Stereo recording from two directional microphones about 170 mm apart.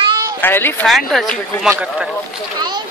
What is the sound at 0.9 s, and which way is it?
Speech, centre (ahead or behind).